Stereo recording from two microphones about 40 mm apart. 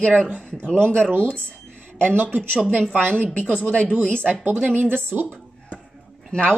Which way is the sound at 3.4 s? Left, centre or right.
Left.